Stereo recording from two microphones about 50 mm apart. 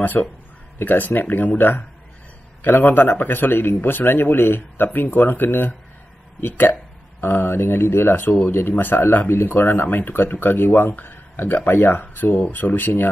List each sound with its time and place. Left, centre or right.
0.0 s a man's voice: left